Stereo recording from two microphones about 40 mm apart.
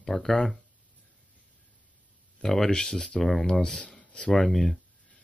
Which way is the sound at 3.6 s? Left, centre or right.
Left.